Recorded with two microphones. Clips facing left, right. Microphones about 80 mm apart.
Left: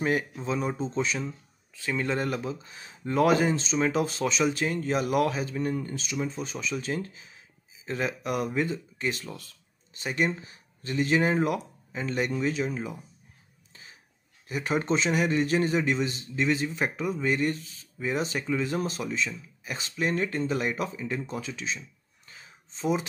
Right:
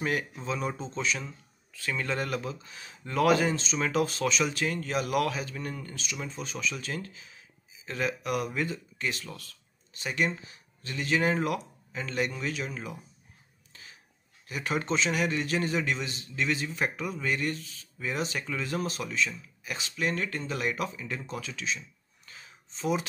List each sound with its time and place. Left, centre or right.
0.0 s a man's voice: left
14.5 s a man's voice: left